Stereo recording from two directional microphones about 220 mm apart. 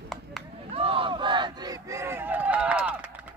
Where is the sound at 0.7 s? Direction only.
25° right (ahead or behind).